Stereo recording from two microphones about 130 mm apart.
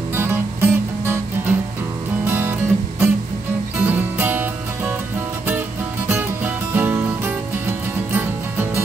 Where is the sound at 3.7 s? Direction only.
15° right (ahead or behind).